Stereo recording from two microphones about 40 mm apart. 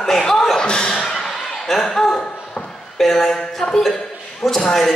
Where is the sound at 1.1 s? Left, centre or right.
Centre.